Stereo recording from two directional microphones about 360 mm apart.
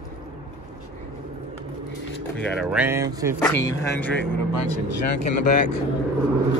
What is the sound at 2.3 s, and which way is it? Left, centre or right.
Speech, centre.